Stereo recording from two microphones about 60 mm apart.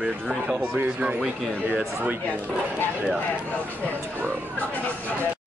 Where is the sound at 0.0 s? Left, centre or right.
Right.